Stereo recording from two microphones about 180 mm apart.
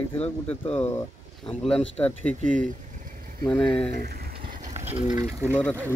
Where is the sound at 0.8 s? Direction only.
15° left (ahead or behind).